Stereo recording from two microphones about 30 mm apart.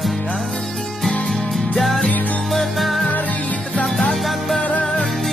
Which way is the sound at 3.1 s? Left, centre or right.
Left.